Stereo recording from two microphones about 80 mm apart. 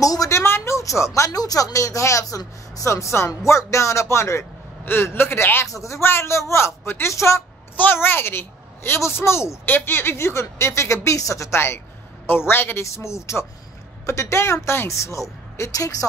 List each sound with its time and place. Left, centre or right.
0.0 s a sound: left
0.4 s a woman's voice: left
7.7 s a woman's voice: left